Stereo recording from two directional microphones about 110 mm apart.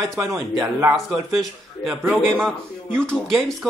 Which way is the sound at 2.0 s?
20° right (ahead or behind).